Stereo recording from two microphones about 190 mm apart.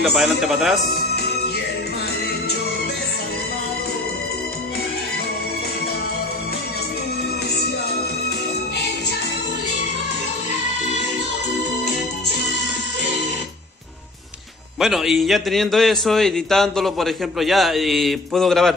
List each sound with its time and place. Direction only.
0.0 s a man's voice: centre (ahead or behind)
0.8 s speech: 50° left (ahead or behind)
14.8 s a man's voice: centre (ahead or behind)